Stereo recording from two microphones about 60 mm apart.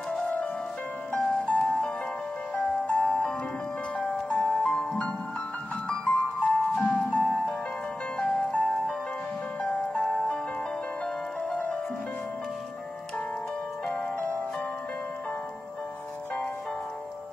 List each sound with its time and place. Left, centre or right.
0.1 s music: left
2.9 s music: centre
8.6 s music: centre
11.4 s music: left